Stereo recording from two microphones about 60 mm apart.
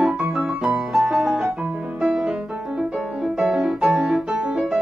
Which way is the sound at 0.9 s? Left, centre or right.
Centre.